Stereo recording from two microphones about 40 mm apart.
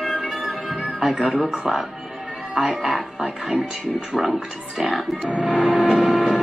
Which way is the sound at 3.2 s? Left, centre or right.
Centre.